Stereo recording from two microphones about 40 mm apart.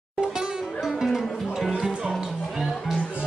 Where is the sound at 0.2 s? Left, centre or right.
Centre.